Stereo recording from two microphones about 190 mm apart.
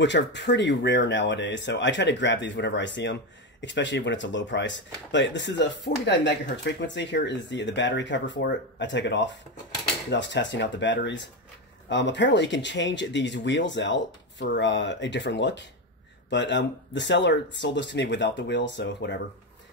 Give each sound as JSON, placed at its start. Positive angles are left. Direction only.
{"t": 0.0, "sound": "speech", "side_deg": 70}